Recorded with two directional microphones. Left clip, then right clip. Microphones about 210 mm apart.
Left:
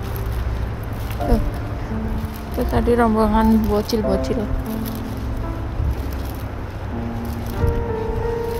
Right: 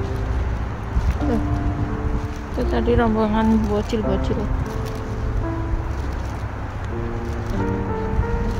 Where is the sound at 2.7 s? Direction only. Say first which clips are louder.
Left 2 dB; 15° left (ahead or behind).